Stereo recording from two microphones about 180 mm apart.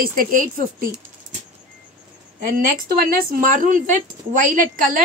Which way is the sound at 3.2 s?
50° right (ahead or behind).